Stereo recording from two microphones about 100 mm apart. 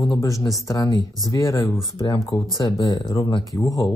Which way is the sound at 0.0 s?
35° left (ahead or behind).